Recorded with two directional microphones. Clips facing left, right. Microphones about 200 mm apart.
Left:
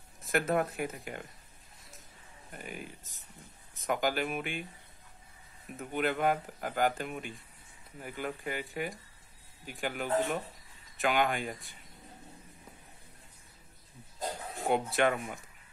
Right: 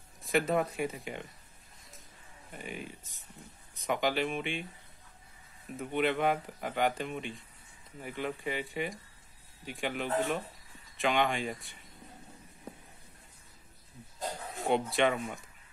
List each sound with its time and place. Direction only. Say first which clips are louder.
0.2 s speech: right 1 dB; centre (ahead or behind)
2.5 s speech: right 2 dB; centre (ahead or behind)
5.8 s speech: right 2 dB; centre (ahead or behind)
14.7 s speech: even; centre (ahead or behind)